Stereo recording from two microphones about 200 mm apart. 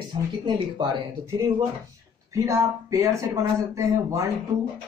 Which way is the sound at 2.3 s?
15° right (ahead or behind).